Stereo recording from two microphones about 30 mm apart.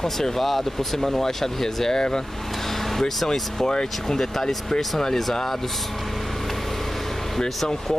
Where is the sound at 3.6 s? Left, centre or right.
Centre.